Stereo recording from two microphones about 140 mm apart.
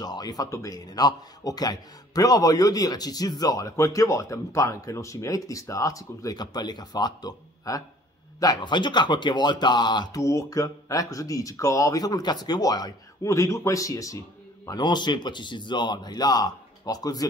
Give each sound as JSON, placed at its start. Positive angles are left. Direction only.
{"t": 0.0, "sound": "speech", "side_deg": 30}